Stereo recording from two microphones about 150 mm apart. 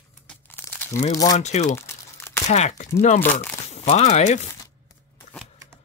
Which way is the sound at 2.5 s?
50° left (ahead or behind).